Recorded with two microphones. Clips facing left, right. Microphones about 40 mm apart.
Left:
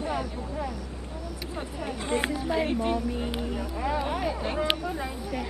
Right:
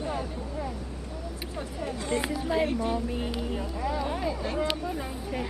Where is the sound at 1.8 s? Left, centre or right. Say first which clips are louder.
Left 1 dB; left.